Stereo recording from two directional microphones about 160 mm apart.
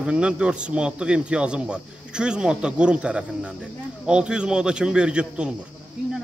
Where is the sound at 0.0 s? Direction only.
5° right (ahead or behind).